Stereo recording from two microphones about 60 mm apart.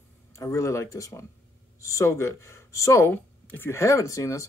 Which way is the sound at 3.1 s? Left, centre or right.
Left.